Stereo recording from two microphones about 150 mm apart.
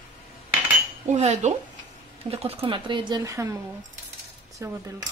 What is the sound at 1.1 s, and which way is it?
A woman's voice, 50° right (ahead or behind).